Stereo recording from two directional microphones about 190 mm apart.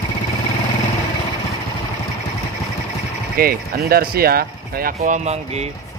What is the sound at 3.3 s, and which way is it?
Speech, 55° right (ahead or behind).